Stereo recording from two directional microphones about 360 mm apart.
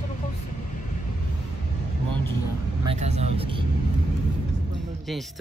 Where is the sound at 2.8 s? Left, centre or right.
Centre.